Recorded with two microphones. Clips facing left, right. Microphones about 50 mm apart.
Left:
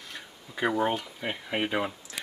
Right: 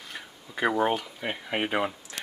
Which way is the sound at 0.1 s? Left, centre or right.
Centre.